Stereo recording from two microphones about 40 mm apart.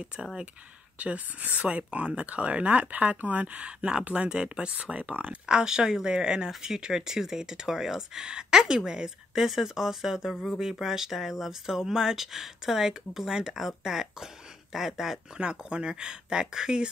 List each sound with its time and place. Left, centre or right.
0.9 s speech: right
4.7 s speech: right
5.5 s speech: right
15.3 s speech: right